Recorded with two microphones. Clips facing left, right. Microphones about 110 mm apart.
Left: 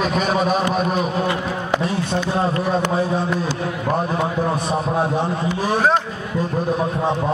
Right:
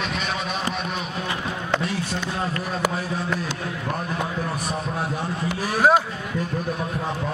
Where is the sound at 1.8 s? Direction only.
25° left (ahead or behind).